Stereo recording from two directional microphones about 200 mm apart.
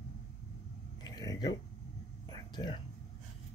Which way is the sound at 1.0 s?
20° left (ahead or behind).